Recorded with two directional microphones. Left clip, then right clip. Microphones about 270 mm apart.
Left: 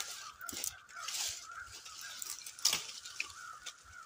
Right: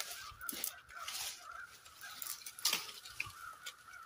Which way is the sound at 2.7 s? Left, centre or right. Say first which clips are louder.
Left 2 dB; centre.